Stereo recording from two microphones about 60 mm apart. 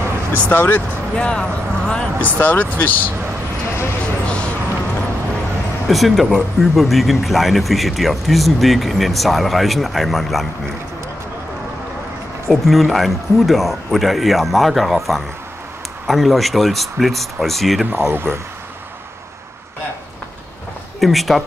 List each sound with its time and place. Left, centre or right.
0.3 s speech: left
1.1 s speech: centre
2.2 s speech: left
4.0 s a sound: centre
5.9 s speech: centre
12.4 s speech: centre
18.0 s speech: right
21.0 s speech: centre